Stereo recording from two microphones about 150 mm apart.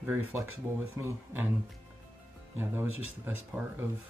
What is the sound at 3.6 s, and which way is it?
Speech, 10° right (ahead or behind).